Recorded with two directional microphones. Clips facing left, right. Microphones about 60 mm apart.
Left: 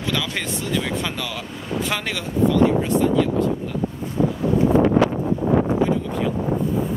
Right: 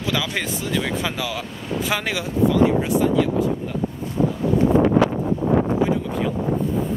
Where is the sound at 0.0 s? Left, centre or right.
Centre.